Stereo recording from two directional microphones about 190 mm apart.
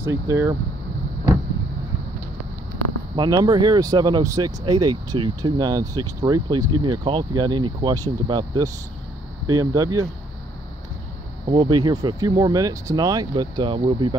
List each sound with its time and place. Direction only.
0.0 s speech: 15° right (ahead or behind)
3.2 s speech: 20° right (ahead or behind)
11.4 s speech: 25° right (ahead or behind)